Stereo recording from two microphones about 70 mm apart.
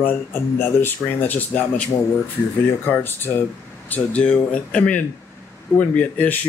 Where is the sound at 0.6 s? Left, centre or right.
Left.